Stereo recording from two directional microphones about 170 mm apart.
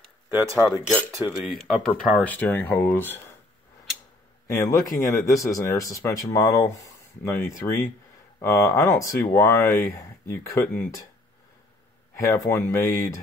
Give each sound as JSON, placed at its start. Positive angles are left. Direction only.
{"t": 0.3, "sound": "speech", "side_deg": -10}
{"t": 1.9, "sound": "speech", "side_deg": 5}
{"t": 4.5, "sound": "a man's voice", "side_deg": 15}
{"t": 12.4, "sound": "speech", "side_deg": 15}